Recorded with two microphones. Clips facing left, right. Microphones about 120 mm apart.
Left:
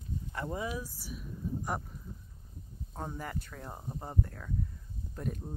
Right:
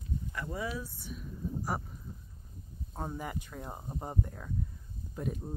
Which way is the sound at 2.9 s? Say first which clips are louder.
Right 1 dB; 10° right (ahead or behind).